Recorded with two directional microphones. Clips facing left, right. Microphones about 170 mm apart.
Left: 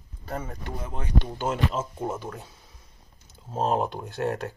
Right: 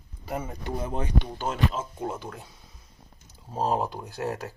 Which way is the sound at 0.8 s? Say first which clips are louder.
Right 7 dB; 25° right (ahead or behind).